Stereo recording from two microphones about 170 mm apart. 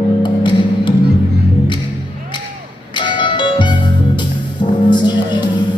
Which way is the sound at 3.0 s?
30° left (ahead or behind).